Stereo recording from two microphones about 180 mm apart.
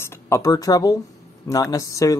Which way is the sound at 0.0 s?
15° left (ahead or behind).